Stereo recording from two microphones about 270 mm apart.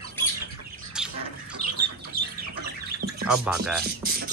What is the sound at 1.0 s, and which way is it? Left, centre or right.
Squawk, centre.